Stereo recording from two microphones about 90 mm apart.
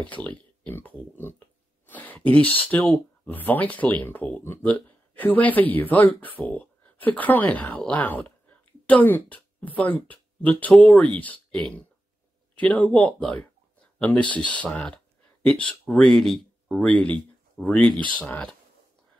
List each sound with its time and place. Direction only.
0.1 s speech: 20° left (ahead or behind)